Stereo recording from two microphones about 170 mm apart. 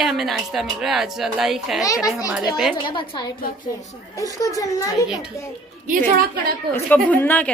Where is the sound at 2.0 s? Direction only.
20° left (ahead or behind).